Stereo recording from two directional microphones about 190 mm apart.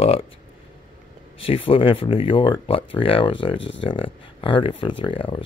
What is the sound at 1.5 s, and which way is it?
Speech, 30° left (ahead or behind).